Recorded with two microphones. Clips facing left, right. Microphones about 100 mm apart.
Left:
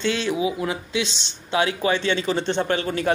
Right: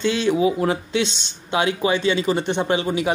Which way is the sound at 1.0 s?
20° right (ahead or behind).